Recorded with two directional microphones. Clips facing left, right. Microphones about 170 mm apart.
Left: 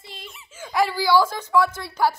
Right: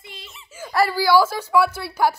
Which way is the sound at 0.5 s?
10° right (ahead or behind).